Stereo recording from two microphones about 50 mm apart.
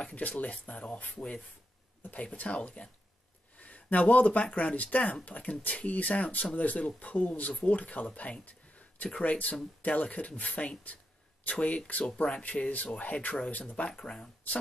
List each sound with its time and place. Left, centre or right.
0.0 s speech: left